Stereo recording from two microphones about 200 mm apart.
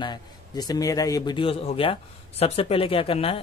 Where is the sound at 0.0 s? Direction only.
20° left (ahead or behind).